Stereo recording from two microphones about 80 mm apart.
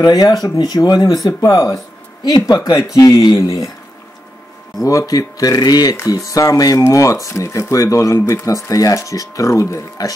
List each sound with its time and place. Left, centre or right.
0.0 s speech: left
1.5 s speech: left
4.8 s speech: left
5.9 s speech: left